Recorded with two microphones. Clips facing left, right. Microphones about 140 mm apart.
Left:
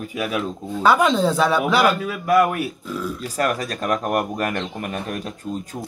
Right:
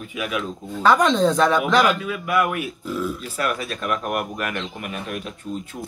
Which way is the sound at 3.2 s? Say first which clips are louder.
Left 3 dB; 40° left (ahead or behind).